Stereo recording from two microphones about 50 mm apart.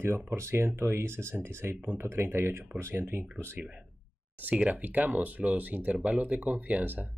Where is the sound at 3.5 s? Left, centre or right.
Right.